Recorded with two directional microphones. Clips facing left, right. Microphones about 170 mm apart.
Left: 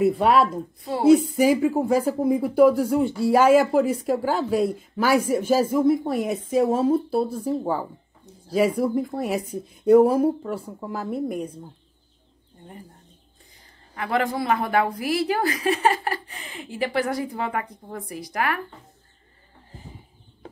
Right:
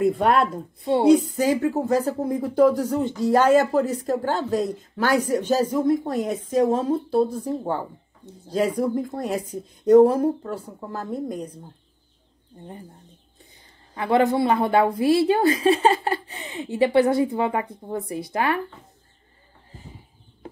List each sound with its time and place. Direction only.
0.0 s speech: centre (ahead or behind)
13.9 s a woman's voice: 25° right (ahead or behind)